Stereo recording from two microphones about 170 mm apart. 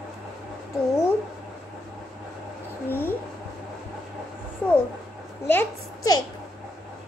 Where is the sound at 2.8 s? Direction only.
10° left (ahead or behind).